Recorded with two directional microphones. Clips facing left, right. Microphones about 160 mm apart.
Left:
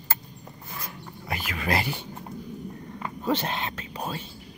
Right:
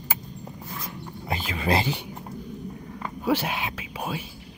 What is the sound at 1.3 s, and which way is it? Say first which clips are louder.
Speech: right 3 dB; 25° right (ahead or behind).